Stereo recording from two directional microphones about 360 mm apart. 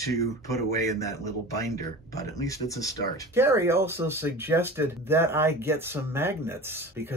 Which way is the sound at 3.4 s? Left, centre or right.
Centre.